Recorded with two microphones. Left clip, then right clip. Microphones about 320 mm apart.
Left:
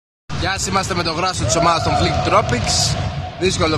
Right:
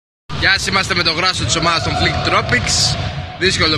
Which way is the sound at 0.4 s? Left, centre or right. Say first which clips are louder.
Right 5 dB; centre.